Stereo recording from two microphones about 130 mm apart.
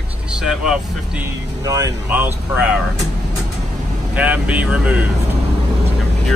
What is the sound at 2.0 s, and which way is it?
Speech, 15° right (ahead or behind).